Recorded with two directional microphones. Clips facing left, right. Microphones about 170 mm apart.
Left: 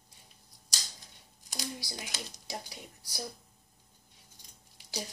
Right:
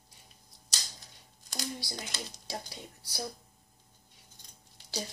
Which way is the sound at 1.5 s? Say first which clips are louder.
Right 2 dB; 15° left (ahead or behind).